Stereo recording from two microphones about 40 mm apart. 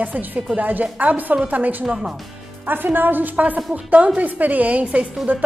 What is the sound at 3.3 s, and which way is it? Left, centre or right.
A woman's voice, right.